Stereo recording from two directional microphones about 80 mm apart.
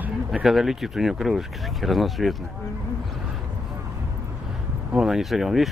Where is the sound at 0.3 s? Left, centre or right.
Centre.